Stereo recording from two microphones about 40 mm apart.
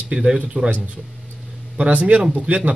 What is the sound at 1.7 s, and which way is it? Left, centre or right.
Speech, right.